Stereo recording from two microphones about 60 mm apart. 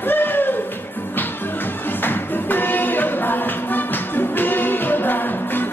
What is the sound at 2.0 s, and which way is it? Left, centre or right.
Music, left.